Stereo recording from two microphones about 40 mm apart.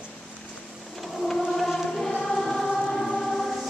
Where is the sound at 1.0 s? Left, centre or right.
Centre.